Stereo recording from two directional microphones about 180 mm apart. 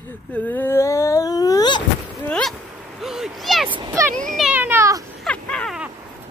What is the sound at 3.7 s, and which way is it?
Speech, 20° right (ahead or behind).